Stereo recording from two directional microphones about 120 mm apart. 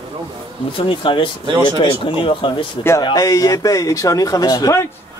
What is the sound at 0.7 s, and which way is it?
Speech, 45° left (ahead or behind).